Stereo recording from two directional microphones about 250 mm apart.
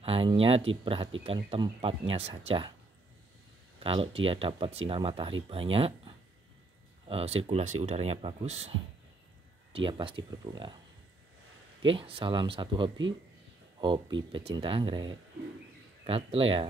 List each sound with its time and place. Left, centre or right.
0.0 s speech: right
3.8 s speech: right
11.8 s speech: right